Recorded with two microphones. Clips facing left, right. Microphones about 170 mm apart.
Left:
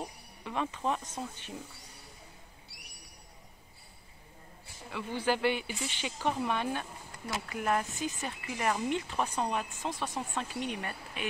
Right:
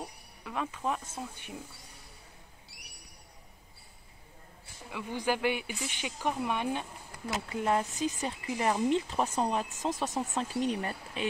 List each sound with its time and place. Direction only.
0.0 s speech: centre (ahead or behind)
4.9 s speech: 10° right (ahead or behind); by 9.9 s 40° right (ahead or behind)
9.9 s speech: 20° right (ahead or behind)
10.3 s speech: 35° right (ahead or behind)